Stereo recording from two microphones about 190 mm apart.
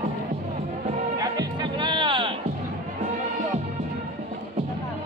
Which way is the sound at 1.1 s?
20° right (ahead or behind).